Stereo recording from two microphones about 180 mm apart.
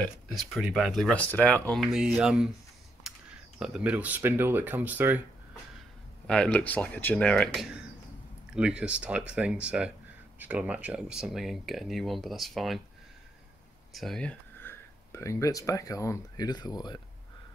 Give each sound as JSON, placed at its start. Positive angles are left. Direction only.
{"t": 0.0, "sound": "speech", "side_deg": 0}
{"t": 3.1, "sound": "a sound", "side_deg": -5}
{"t": 3.5, "sound": "speech", "side_deg": -5}
{"t": 6.2, "sound": "speech", "side_deg": 5}
{"t": 13.9, "sound": "speech", "side_deg": 0}